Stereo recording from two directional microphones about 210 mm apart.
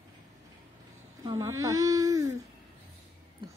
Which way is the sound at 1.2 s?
15° right (ahead or behind).